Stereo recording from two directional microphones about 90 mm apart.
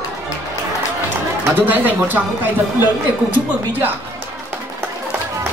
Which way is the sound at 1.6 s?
20° right (ahead or behind).